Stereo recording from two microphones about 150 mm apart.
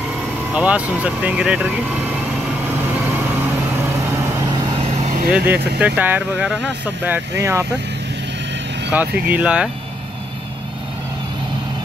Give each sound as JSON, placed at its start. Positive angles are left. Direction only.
{"t": 0.6, "sound": "speech", "side_deg": -10}
{"t": 2.6, "sound": "vehicle", "side_deg": -15}
{"t": 4.7, "sound": "vehicle", "side_deg": -45}
{"t": 5.3, "sound": "speech", "side_deg": -10}
{"t": 7.3, "sound": "speech", "side_deg": -20}
{"t": 8.9, "sound": "speech", "side_deg": -10}